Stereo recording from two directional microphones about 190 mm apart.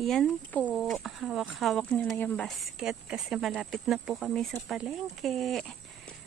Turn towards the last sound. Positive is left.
turn(degrees=0)  # may be behind; listen again after turning